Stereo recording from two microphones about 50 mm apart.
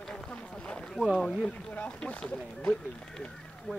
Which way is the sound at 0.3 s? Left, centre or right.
Left.